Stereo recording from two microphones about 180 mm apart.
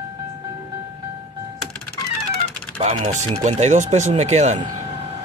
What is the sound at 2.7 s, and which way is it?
Speech, 40° right (ahead or behind).